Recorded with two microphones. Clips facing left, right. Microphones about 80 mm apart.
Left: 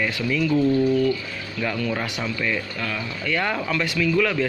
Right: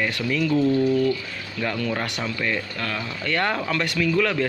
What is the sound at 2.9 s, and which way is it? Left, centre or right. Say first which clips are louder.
Speech: even; right.